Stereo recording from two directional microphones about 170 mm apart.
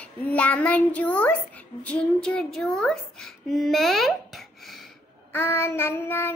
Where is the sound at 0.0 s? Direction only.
10° left (ahead or behind).